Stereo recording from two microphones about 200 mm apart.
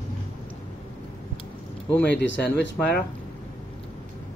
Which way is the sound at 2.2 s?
55° left (ahead or behind).